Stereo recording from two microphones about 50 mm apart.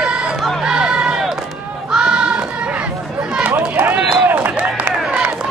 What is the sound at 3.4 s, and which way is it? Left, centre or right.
Run, right.